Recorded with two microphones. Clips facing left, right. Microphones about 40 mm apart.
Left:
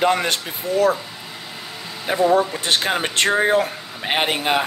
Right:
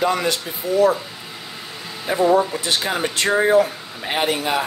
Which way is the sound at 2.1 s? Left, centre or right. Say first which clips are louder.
Even; left.